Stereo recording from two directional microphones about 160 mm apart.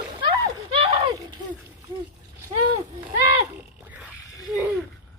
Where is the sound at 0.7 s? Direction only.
35° right (ahead or behind).